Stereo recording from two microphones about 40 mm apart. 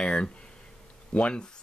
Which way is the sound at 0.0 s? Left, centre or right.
Left.